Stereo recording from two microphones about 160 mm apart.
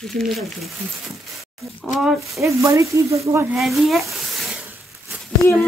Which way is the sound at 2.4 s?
20° right (ahead or behind).